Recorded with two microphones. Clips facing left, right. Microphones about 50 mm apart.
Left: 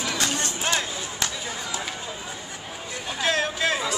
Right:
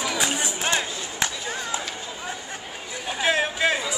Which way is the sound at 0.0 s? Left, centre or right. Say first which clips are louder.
Right 1 dB; centre.